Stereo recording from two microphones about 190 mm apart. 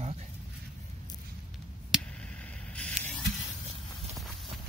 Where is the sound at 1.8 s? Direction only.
5° right (ahead or behind).